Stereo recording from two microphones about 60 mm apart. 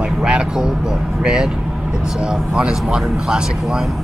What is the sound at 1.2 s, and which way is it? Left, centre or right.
Speech, centre.